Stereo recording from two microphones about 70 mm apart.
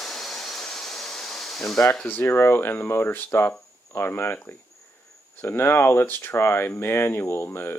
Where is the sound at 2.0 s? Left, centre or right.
Left.